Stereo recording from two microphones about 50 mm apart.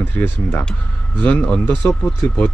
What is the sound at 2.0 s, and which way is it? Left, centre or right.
Speech, centre.